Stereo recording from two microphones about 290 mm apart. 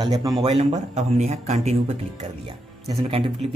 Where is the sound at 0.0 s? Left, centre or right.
Centre.